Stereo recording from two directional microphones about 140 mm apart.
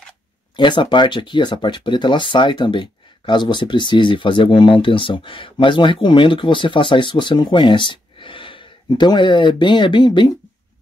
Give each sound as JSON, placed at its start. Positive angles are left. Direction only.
{"t": 0.6, "sound": "speech", "side_deg": 35}